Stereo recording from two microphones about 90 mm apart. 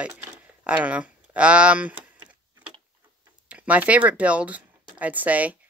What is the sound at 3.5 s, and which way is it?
Speech, 15° right (ahead or behind).